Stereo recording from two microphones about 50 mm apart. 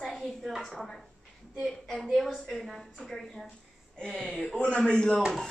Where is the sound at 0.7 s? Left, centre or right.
Centre.